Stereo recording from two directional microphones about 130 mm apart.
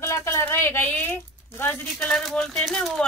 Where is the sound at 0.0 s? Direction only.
20° left (ahead or behind).